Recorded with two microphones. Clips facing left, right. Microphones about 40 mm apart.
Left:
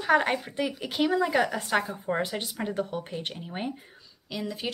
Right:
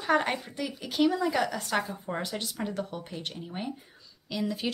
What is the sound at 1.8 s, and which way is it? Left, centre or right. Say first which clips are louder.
Speech: left 4 dB; centre.